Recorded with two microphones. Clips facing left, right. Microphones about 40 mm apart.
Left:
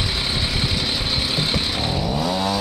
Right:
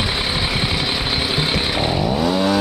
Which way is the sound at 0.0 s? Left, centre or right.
Centre.